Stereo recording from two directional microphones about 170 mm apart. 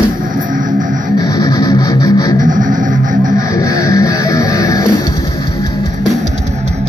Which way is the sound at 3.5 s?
20° left (ahead or behind).